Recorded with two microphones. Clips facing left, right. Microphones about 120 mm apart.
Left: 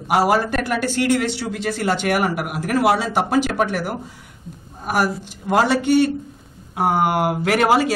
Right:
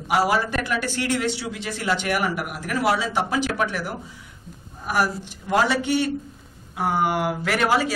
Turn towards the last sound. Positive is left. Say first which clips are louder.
# left 5 dB
turn(degrees=50)  # may be behind; listen again after turning